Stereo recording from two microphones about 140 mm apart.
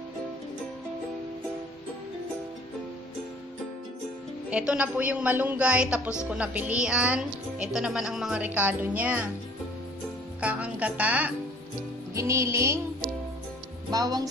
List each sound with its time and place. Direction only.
4.5 s a woman's voice: 10° right (ahead or behind)
10.4 s speech: 10° right (ahead or behind)
12.1 s music: 20° right (ahead or behind)
13.8 s music: 25° right (ahead or behind)